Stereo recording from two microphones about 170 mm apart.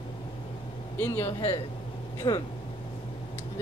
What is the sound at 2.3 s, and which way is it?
Speech, 25° left (ahead or behind).